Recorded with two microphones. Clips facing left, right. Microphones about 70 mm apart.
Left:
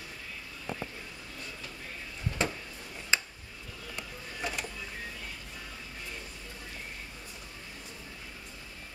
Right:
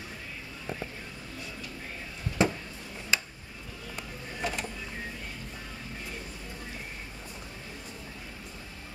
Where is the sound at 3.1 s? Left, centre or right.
Left.